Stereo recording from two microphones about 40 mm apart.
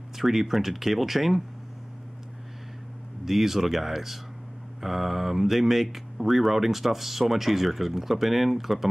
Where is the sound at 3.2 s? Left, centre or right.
Centre.